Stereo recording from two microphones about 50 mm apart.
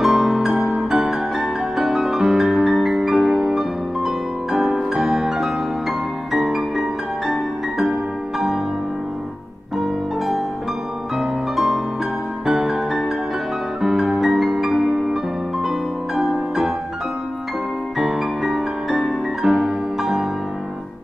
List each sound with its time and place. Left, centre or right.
0.0 s music: centre
9.8 s music: centre
16.2 s music: centre
17.9 s music: centre